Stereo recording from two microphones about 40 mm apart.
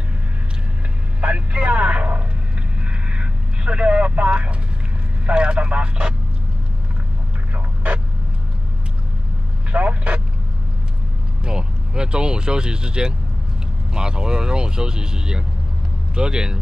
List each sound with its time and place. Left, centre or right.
1.2 s a sound: right
2.8 s vehicle: right
7.5 s a sound: right
9.7 s vehicle: right
11.4 s vehicle: right
13.9 s speech: right